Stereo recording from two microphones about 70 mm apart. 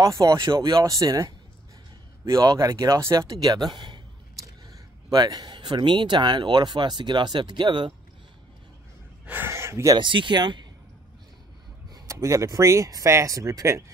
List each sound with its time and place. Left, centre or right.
0.0 s speech: right
5.1 s speech: right
9.2 s a sound: right
9.5 s a sound: right
10.3 s speech: right
11.9 s speech: right